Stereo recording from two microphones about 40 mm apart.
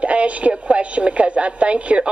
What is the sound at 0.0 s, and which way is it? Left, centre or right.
A woman's voice, right.